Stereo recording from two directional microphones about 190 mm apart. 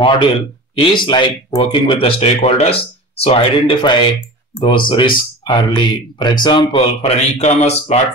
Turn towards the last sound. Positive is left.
turn(degrees=35)  # may be behind; listen again after turning